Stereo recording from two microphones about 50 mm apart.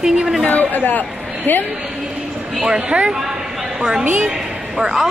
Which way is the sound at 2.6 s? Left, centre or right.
Centre.